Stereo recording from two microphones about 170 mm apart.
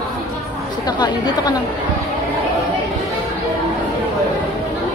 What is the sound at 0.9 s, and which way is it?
Speech, 25° left (ahead or behind).